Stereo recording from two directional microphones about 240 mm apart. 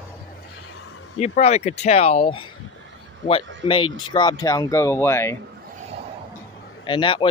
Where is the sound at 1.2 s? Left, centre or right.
Left.